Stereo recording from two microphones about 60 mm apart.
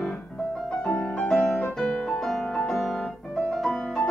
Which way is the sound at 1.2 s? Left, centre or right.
Centre.